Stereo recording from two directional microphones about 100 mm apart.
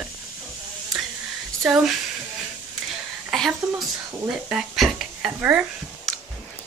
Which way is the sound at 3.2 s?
Centre (ahead or behind).